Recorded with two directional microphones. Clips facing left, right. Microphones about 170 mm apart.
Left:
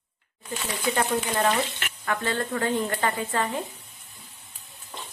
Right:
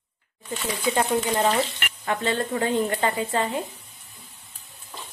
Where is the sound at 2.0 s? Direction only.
20° right (ahead or behind).